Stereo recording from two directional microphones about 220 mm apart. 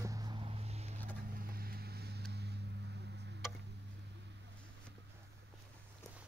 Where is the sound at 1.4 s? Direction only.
45° right (ahead or behind).